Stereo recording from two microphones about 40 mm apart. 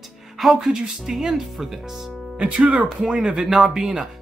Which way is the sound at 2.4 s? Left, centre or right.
Right.